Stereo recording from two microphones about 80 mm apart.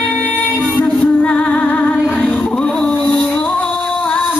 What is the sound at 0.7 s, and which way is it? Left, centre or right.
Music, centre.